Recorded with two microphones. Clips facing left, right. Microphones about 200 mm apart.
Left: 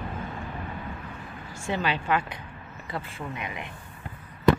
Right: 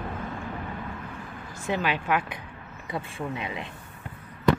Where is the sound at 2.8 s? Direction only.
25° right (ahead or behind).